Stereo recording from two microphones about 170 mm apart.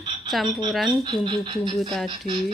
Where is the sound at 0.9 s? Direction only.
25° right (ahead or behind).